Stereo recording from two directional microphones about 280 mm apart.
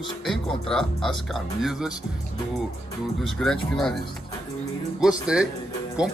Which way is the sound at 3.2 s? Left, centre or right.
Centre.